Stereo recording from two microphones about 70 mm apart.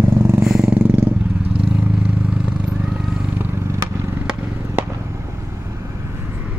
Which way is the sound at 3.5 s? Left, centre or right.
Right.